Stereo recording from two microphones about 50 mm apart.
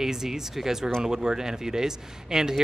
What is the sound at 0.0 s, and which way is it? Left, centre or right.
Speech, centre.